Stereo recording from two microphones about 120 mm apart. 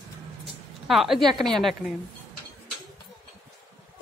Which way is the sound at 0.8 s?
Centre (ahead or behind).